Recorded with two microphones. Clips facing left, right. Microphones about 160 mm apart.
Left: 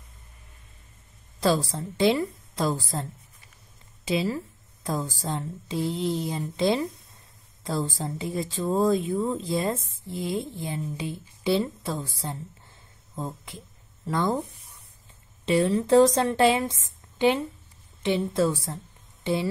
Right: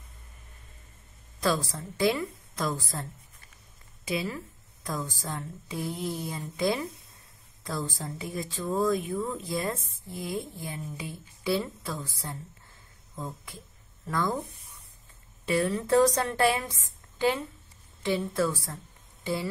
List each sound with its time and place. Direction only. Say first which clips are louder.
1.4 s a woman's voice: left 4 dB; 30° left (ahead or behind)
15.4 s speech: left 5 dB; 25° left (ahead or behind)
16.8 s a sound: left 3 dB; 20° left (ahead or behind)
18.0 s speech: left 4 dB; 20° left (ahead or behind)